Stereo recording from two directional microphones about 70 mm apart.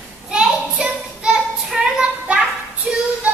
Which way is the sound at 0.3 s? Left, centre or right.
Centre.